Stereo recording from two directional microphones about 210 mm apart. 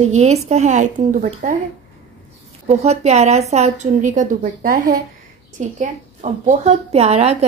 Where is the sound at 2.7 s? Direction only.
30° right (ahead or behind).